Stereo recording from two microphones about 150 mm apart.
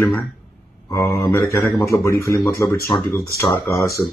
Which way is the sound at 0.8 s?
20° left (ahead or behind).